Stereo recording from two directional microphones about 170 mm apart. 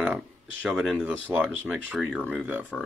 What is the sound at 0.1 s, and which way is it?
Speech, centre (ahead or behind).